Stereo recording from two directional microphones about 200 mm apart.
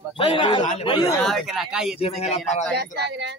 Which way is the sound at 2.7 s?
55° right (ahead or behind).